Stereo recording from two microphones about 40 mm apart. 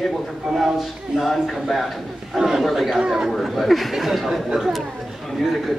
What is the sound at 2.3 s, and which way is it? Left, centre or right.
Speech, centre.